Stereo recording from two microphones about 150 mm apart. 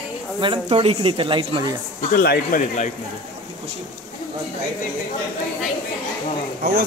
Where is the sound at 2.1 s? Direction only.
90° left.